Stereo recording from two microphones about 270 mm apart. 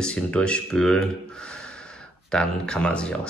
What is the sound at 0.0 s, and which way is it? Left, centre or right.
Speech, centre.